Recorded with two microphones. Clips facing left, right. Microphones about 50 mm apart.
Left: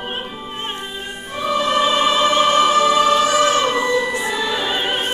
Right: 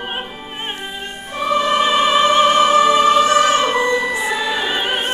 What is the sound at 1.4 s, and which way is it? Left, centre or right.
Music, centre.